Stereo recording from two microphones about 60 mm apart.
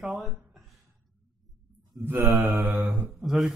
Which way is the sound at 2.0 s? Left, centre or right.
Right.